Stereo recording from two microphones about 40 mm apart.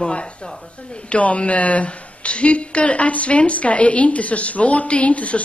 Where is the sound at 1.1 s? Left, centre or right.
Left.